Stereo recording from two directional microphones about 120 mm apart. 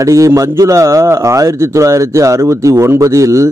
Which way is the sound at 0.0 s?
25° right (ahead or behind).